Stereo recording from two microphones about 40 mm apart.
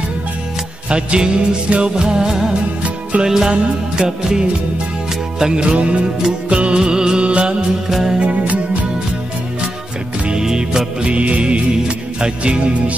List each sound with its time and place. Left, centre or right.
0.8 s music: right
2.8 s music: right
3.3 s music: centre
5.6 s music: right
7.9 s music: centre
8.2 s music: right
10.3 s music: centre
11.0 s music: right